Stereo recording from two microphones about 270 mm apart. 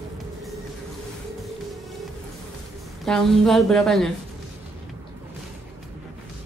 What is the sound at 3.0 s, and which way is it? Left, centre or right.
A woman's voice, centre.